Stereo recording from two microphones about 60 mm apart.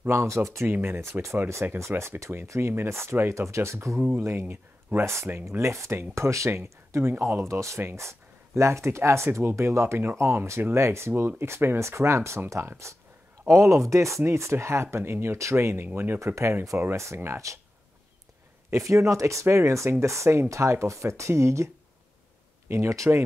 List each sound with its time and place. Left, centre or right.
0.1 s speech: right
0.7 s speech: right
2.7 s speech: right
7.8 s speech: right
16.9 s speech: right
18.7 s speech: right
22.7 s speech: right